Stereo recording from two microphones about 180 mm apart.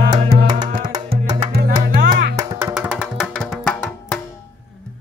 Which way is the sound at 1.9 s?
55° right (ahead or behind).